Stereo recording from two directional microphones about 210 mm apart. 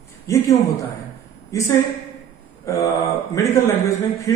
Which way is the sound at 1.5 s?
15° left (ahead or behind).